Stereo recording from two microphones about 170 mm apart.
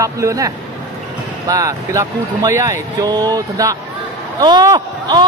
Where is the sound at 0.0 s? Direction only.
20° right (ahead or behind).